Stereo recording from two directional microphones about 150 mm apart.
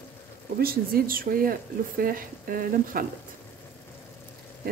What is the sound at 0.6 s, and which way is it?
Speech, 85° right.